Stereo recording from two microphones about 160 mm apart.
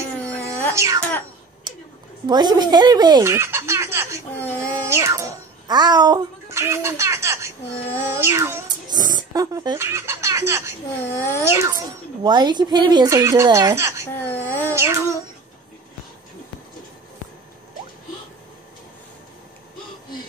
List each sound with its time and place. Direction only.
0.2 s a sound: 10° left (ahead or behind)
0.7 s speech: 20° right (ahead or behind)
2.2 s speech: 25° right (ahead or behind)
4.4 s speech: 10° left (ahead or behind)
4.8 s a child's voice: 20° right (ahead or behind)
8.1 s music: 15° right (ahead or behind)
8.8 s speech: 25° right (ahead or behind)
11.1 s speech: 15° left (ahead or behind)
11.4 s music: 15° right (ahead or behind)
12.2 s speech: 25° right (ahead or behind)
14.3 s speech: 10° left (ahead or behind)
14.7 s music: 15° right (ahead or behind)